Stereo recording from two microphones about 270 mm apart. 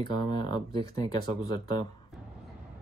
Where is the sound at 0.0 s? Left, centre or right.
Centre.